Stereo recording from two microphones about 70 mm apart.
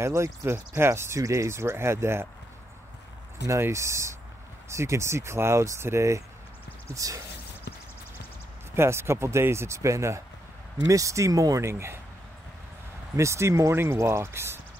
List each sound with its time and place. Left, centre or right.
0.0 s speech: right
3.4 s speech: right
8.7 s speech: right
13.1 s speech: right